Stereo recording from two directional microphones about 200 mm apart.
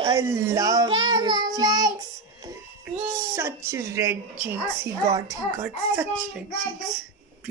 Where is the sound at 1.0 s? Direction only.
20° right (ahead or behind).